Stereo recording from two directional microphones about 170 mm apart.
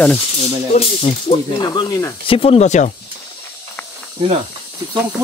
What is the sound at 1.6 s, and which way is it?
Speech, 25° left (ahead or behind).